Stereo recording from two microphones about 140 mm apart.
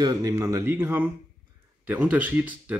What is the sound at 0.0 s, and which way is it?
Speech, 25° right (ahead or behind).